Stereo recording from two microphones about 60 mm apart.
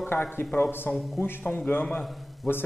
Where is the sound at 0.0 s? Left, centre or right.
Left.